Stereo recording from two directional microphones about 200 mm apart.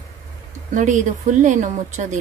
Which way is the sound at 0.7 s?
40° right (ahead or behind).